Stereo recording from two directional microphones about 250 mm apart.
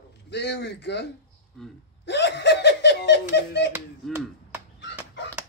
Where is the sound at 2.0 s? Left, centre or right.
Left.